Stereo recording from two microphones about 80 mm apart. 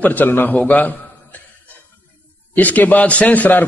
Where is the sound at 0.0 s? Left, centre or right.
Left.